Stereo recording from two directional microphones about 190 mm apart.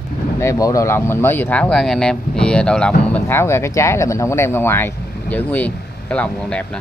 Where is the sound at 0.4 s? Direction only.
15° left (ahead or behind).